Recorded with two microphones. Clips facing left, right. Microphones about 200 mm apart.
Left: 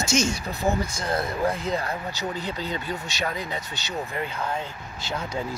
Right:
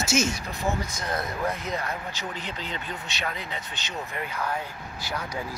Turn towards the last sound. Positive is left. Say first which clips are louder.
# left 3 dB
turn(degrees=25)  # may be behind; listen again after turning